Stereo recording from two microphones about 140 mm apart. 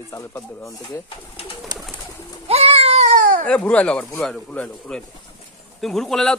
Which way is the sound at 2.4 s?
45° right (ahead or behind).